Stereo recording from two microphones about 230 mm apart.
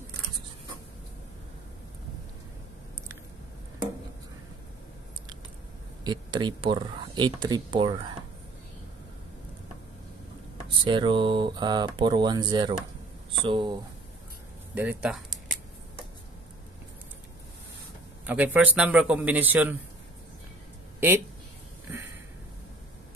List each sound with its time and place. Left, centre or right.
6.0 s speech: centre
10.8 s speech: right
14.7 s a sound: centre
18.2 s a man's voice: centre